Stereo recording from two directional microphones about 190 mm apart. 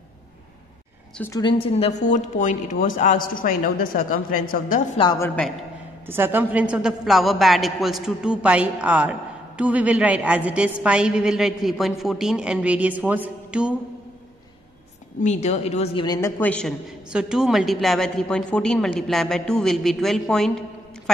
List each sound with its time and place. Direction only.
1.1 s a woman's voice: 10° left (ahead or behind)
1.4 s a woman's voice: 25° left (ahead or behind); by 4.8 s 45° left (ahead or behind)
5.2 s a man's voice: 5° left (ahead or behind)
6.0 s a woman's voice: 10° right (ahead or behind)
15.2 s speech: 35° left (ahead or behind)
16.2 s a man's voice: 10° left (ahead or behind)
17.1 s a woman's voice: 5° right (ahead or behind)